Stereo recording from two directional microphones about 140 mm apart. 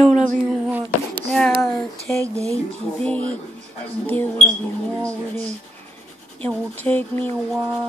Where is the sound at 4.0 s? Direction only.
10° left (ahead or behind).